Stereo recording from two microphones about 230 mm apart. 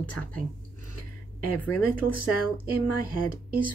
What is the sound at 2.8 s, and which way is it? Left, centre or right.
Speech, right.